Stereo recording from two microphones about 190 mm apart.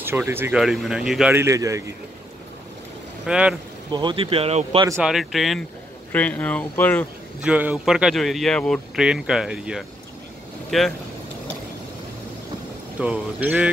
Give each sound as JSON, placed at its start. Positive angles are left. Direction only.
{"t": 0.0, "sound": "speech", "side_deg": -10}
{"t": 1.3, "sound": "speech", "side_deg": -15}
{"t": 3.3, "sound": "speech", "side_deg": -5}
{"t": 3.9, "sound": "speech", "side_deg": -25}
{"t": 5.0, "sound": "speech", "side_deg": 0}
{"t": 7.4, "sound": "speech", "side_deg": -5}
{"t": 13.0, "sound": "speech", "side_deg": -5}